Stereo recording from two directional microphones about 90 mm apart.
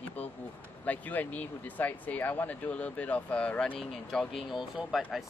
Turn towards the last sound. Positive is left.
turn(degrees=-5)  # may be behind; listen again after turning